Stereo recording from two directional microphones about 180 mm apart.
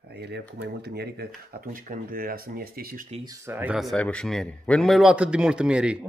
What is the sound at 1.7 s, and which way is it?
Speech, 50° right (ahead or behind).